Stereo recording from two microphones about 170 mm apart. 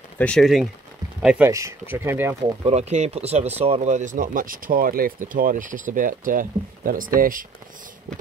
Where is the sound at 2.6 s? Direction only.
40° right (ahead or behind).